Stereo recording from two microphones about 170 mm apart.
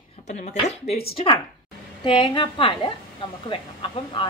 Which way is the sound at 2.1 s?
30° left (ahead or behind).